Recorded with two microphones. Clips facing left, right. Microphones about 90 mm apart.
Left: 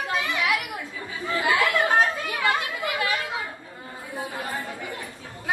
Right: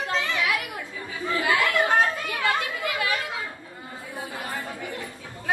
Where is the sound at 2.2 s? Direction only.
20° left (ahead or behind).